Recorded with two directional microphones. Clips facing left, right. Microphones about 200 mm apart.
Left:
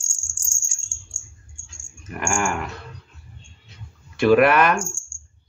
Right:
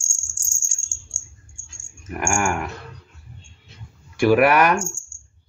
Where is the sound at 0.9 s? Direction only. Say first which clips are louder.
Even; 25° right (ahead or behind).